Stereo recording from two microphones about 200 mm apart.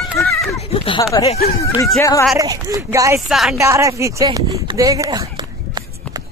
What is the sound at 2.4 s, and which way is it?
Speech, 15° right (ahead or behind).